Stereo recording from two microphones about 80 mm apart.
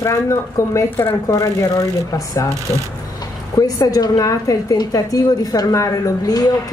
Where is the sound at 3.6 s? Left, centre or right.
Left.